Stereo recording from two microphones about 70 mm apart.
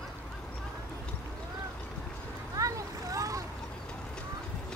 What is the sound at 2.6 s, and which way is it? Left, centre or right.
Vehicle, right.